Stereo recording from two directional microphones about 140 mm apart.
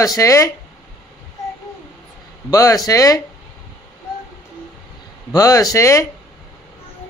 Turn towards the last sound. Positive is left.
turn(degrees=20)  # may be behind; listen again after turning